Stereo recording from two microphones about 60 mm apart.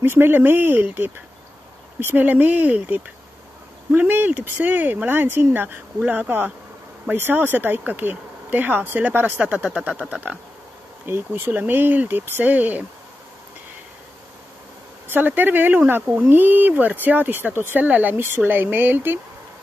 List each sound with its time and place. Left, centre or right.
0.0 s speech: right
2.0 s speech: right
11.1 s speech: right
15.0 s speech: right